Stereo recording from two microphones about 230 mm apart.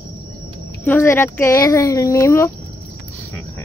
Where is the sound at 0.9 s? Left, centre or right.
Centre.